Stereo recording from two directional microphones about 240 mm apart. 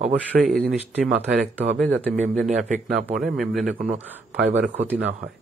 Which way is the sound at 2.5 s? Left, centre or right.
Right.